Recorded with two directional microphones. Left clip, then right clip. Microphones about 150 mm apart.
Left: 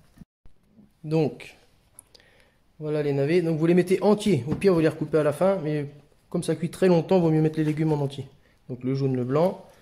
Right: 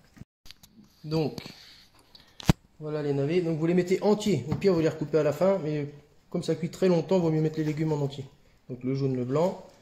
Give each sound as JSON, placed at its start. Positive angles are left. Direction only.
{"t": 1.0, "sound": "speech", "side_deg": 60}
{"t": 2.8, "sound": "a man's voice", "side_deg": 55}